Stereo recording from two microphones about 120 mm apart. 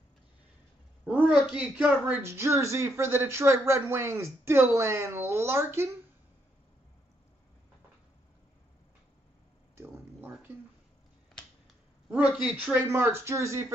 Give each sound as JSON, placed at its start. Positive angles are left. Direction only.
{"t": 1.0, "sound": "speech", "side_deg": -10}
{"t": 12.1, "sound": "speech", "side_deg": -10}